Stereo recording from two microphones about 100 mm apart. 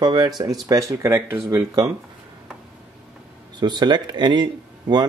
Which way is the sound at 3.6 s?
45° right (ahead or behind).